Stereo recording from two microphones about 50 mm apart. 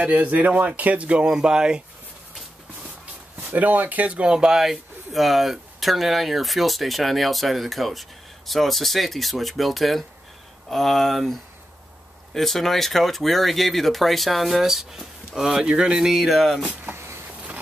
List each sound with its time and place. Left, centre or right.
0.0 s speech: right
3.3 s speech: right
4.3 s speech: centre
12.4 s speech: centre
16.9 s vehicle: right